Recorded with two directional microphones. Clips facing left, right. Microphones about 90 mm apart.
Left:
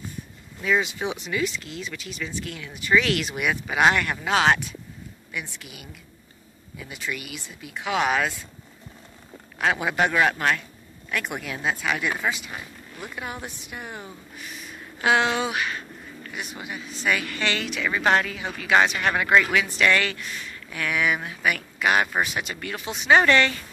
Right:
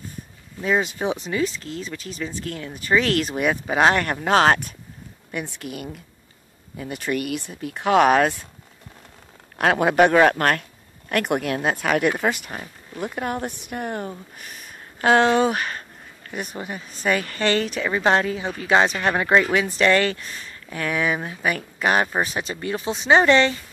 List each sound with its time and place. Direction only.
0.6 s speech: 35° right (ahead or behind)
9.6 s speech: 55° right (ahead or behind); by 23.6 s 25° right (ahead or behind)